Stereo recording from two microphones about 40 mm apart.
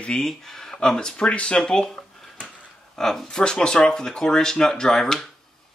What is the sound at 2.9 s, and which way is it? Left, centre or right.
Speech, centre.